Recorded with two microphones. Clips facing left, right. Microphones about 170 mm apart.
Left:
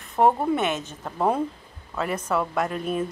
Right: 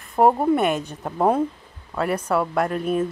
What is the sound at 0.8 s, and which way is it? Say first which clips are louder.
Speech: right 4 dB; 15° right (ahead or behind).